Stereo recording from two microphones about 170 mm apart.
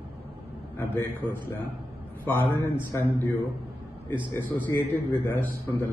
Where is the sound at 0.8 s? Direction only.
10° left (ahead or behind).